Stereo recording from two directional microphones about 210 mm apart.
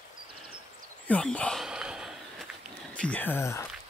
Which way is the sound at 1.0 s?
5° left (ahead or behind).